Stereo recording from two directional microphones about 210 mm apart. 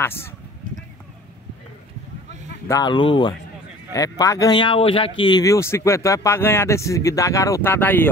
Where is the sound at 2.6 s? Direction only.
15° left (ahead or behind).